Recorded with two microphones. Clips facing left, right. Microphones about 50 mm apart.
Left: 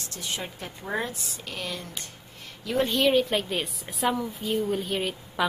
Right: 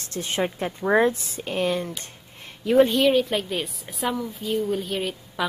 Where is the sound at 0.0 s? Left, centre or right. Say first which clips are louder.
Right 8 dB; right.